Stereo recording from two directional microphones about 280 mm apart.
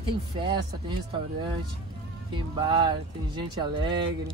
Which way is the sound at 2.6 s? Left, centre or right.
Centre.